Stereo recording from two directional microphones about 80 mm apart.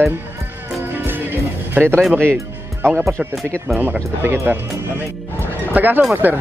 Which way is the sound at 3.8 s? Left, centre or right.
Right.